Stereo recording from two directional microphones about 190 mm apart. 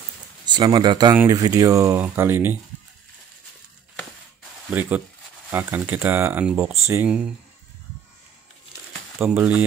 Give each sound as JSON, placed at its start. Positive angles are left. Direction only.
{"t": 0.5, "sound": "speech", "side_deg": -25}
{"t": 4.7, "sound": "speech", "side_deg": -10}
{"t": 9.2, "sound": "speech", "side_deg": -10}